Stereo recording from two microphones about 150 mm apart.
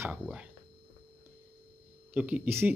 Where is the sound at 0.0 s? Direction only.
10° right (ahead or behind).